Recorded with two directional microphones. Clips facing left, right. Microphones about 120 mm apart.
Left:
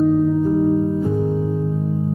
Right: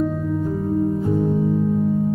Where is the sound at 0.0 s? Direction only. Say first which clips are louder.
Left 7 dB; 20° left (ahead or behind).